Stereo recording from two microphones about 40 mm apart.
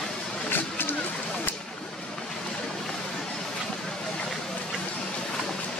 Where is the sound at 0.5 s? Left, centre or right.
Left.